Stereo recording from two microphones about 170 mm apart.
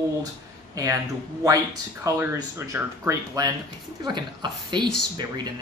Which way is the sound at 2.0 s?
20° right (ahead or behind).